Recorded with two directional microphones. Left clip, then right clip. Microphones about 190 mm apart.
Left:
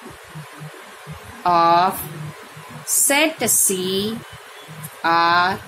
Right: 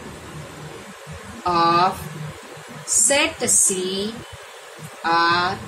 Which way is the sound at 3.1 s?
40° left (ahead or behind).